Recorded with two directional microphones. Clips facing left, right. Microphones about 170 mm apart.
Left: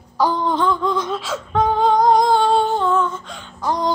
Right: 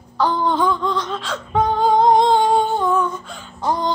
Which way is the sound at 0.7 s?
Centre (ahead or behind).